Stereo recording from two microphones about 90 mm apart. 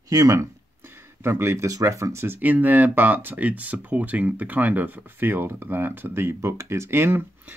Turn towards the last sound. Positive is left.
turn(degrees=-25)  # may be behind; listen again after turning